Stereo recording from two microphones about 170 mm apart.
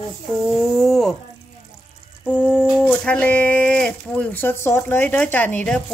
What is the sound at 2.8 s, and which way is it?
A woman's voice, 10° left (ahead or behind).